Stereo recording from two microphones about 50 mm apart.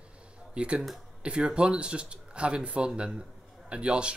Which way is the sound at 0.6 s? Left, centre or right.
Centre.